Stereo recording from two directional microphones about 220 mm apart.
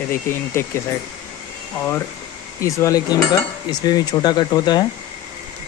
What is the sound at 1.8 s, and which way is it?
Speech, 10° left (ahead or behind).